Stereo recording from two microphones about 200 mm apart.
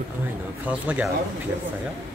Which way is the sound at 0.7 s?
5° right (ahead or behind).